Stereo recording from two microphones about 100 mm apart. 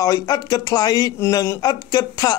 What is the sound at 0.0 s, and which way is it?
Speech, 40° left (ahead or behind).